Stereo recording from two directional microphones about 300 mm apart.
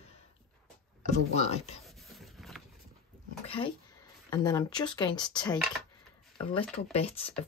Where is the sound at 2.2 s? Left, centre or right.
Centre.